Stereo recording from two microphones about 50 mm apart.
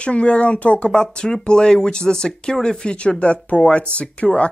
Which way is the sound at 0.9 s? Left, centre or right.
Centre.